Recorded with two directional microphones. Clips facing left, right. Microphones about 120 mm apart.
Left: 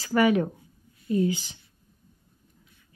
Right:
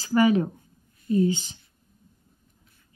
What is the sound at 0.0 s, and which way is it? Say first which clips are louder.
A woman's voice: right 1 dB; 30° right (ahead or behind).